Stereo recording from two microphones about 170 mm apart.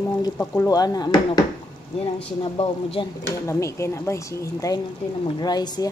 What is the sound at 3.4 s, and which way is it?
Speech, 15° left (ahead or behind).